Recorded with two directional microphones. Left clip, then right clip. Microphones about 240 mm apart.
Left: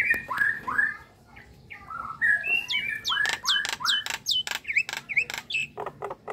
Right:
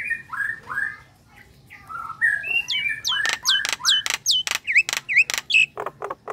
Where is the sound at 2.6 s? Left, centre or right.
Centre.